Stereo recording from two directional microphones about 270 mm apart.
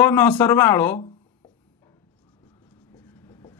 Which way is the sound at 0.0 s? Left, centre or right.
Centre.